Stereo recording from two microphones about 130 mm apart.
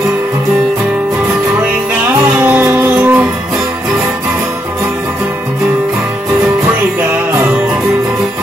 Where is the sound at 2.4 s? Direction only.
15° right (ahead or behind).